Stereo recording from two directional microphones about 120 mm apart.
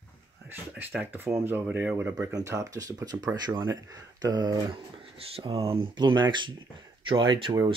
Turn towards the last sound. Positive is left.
turn(degrees=-45)  # may be behind; listen again after turning